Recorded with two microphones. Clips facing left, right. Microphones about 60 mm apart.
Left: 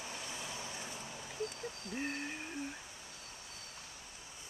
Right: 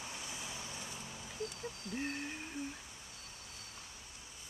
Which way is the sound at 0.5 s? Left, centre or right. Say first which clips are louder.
Left 2 dB; centre.